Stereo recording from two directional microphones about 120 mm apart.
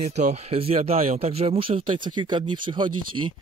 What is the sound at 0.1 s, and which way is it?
Speech, 70° right (ahead or behind).